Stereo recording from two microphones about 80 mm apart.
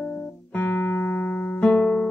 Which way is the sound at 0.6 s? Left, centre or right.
Left.